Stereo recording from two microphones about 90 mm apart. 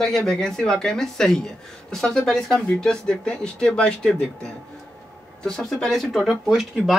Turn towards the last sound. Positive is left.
turn(degrees=0)  # may be behind; listen again after turning